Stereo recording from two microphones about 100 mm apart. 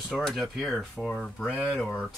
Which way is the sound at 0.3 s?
Centre (ahead or behind).